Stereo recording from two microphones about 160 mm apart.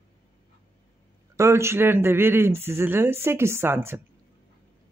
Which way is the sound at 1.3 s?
15° right (ahead or behind).